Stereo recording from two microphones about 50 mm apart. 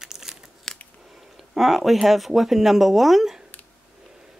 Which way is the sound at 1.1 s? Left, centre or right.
Centre.